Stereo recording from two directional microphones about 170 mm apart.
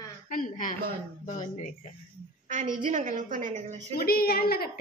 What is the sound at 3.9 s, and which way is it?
Speech, 65° left (ahead or behind).